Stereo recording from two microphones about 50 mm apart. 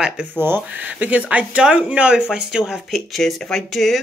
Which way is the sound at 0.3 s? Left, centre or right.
Right.